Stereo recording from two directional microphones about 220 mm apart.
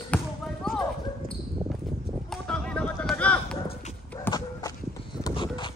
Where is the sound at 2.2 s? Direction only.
5° left (ahead or behind).